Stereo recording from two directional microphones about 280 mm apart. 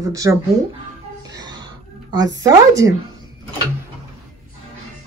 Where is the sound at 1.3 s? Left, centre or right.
Centre.